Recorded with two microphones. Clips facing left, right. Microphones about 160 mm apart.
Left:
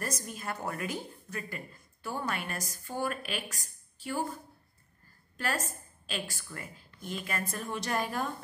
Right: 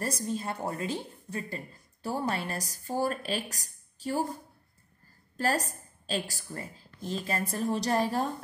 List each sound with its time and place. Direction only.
0.0 s a woman's voice: 30° right (ahead or behind)
5.4 s a woman's voice: 35° right (ahead or behind)